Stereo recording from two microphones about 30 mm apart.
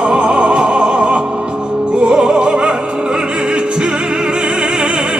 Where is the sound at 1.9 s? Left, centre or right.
Right.